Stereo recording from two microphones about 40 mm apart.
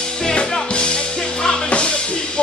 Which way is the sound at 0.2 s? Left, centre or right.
Left.